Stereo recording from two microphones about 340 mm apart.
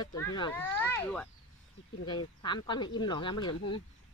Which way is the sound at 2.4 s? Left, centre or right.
Centre.